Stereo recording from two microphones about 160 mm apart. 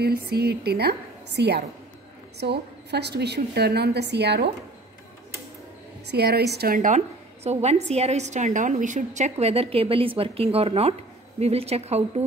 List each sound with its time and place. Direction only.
0.0 s a woman's voice: 85° right
6.0 s a woman's voice: 90° right; by 7.0 s 60° right (ahead or behind)
7.4 s a woman's voice: 40° right (ahead or behind)